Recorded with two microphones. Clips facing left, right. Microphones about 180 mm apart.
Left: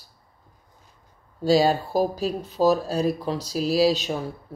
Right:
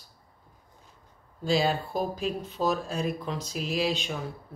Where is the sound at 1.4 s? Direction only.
40° left (ahead or behind).